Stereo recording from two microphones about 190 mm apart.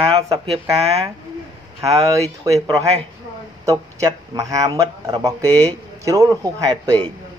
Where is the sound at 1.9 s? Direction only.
35° right (ahead or behind).